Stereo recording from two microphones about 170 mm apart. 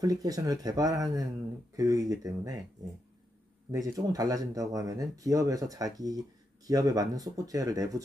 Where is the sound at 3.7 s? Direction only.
20° right (ahead or behind).